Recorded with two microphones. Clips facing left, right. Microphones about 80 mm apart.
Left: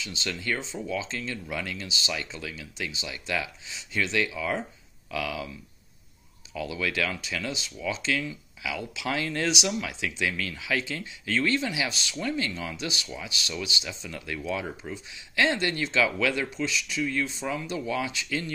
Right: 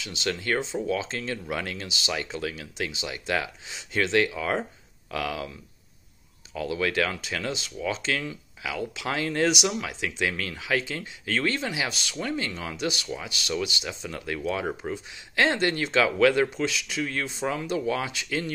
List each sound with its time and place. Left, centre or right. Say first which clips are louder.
0.0 s speech: right 2 dB; right
0.3 s speech: right 5 dB; right
6.5 s speech: right 3 dB; right
12.7 s speech: right 4 dB; right
13.8 s speech: right 3 dB; right
16.4 s speech: right 2 dB; right
17.4 s speech: right 3 dB; right